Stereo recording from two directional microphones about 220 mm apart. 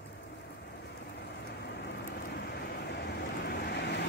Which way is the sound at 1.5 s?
50° left (ahead or behind).